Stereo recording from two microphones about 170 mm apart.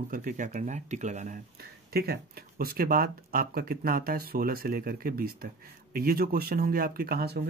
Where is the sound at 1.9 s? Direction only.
65° right (ahead or behind).